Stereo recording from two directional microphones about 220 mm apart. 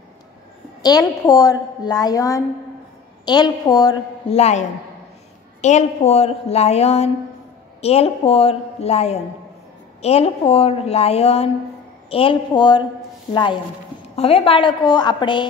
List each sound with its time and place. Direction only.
0.8 s a woman's voice: 15° left (ahead or behind)
4.4 s a woman's voice: 30° left (ahead or behind)